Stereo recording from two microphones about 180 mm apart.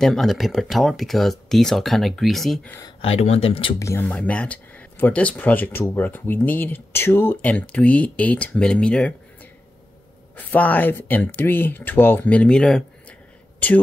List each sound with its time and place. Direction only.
0.0 s speech: centre (ahead or behind)
3.0 s speech: 35° left (ahead or behind)
3.8 s speech: 10° left (ahead or behind)
10.3 s speech: 10° left (ahead or behind)